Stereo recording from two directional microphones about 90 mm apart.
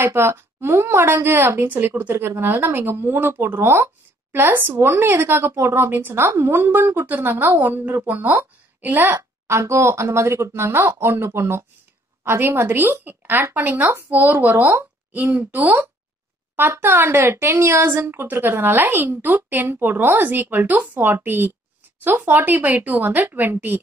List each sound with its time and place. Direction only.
0.0 s a woman's voice: 30° right (ahead or behind)